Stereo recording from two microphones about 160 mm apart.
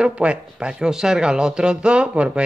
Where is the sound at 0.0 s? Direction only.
5° right (ahead or behind).